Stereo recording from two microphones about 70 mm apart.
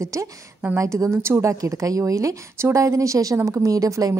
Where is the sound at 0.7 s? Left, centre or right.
Right.